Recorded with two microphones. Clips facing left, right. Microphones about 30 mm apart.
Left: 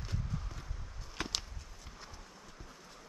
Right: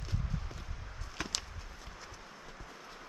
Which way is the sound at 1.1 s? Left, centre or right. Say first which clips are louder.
Even; centre.